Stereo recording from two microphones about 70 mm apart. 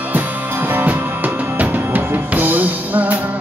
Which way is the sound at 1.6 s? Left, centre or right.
Right.